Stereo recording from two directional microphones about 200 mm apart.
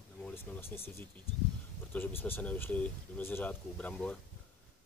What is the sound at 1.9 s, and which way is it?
Speech, 10° left (ahead or behind).